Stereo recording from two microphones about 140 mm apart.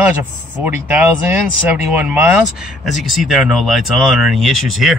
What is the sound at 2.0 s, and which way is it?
Speech, 10° right (ahead or behind).